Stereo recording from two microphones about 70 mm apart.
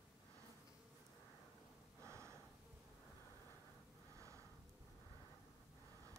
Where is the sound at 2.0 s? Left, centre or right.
Right.